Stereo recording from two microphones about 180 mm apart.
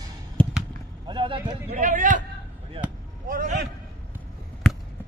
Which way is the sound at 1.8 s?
45° right (ahead or behind).